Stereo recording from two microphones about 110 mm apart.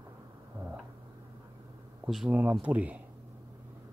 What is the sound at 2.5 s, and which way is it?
Speech, 10° right (ahead or behind).